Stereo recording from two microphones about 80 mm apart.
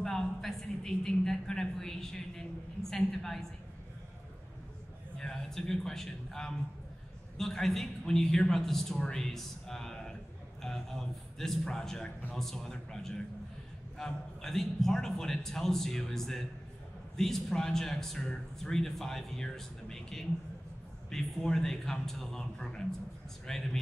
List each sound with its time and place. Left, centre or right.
0.0 s a sound: centre
2.9 s a man's voice: centre
5.2 s a man's voice: centre